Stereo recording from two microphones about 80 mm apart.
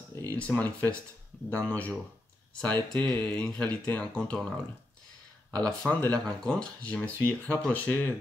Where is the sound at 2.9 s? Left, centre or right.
Centre.